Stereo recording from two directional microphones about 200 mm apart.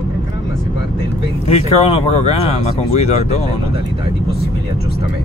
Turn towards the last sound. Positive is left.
turn(degrees=35)  # may be behind; listen again after turning